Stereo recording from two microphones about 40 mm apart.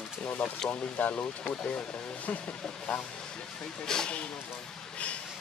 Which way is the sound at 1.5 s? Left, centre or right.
Left.